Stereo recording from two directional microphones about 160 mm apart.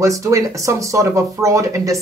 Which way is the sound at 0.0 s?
20° right (ahead or behind).